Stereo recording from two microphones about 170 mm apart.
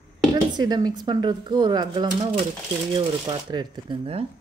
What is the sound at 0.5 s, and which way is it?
Speech, 25° right (ahead or behind).